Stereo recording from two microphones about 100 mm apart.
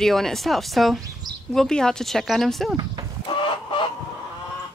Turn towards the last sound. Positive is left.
turn(degrees=55)  # may be behind; listen again after turning